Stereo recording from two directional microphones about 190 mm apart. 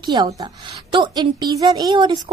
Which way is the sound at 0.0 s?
25° right (ahead or behind).